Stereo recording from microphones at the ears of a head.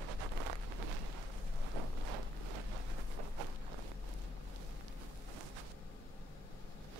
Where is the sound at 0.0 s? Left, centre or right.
Right.